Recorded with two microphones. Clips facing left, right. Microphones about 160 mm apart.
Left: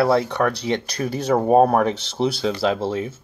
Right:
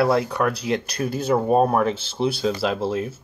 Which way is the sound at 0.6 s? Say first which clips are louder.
Left 1 dB; 5° right (ahead or behind).